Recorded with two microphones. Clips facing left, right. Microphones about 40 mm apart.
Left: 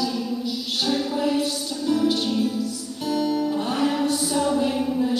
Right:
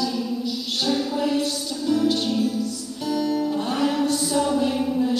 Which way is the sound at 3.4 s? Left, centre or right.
Centre.